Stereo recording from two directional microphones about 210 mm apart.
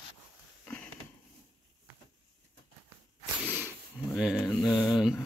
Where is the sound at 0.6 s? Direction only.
5° left (ahead or behind).